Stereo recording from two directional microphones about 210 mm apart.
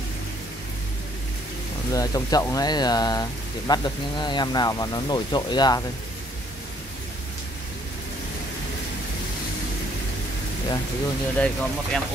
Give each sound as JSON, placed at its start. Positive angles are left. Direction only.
{"t": 1.9, "sound": "speech", "side_deg": 15}
{"t": 11.3, "sound": "speech", "side_deg": 5}